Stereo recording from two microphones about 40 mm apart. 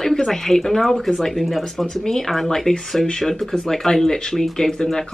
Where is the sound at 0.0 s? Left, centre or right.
Centre.